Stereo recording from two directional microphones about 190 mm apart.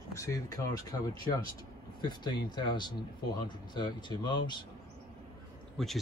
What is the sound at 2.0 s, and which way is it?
Speech, 20° left (ahead or behind).